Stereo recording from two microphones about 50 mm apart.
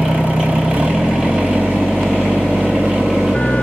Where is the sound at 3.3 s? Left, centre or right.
Left.